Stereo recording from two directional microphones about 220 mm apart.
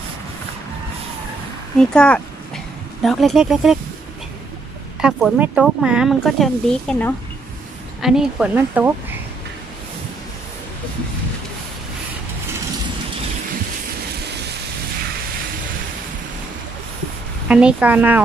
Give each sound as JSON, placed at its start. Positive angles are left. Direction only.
{"t": 1.8, "sound": "speech", "side_deg": 5}
{"t": 5.0, "sound": "speech", "side_deg": -5}
{"t": 17.5, "sound": "speech", "side_deg": -5}